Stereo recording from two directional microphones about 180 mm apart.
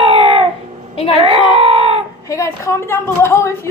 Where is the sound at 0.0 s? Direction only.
30° right (ahead or behind).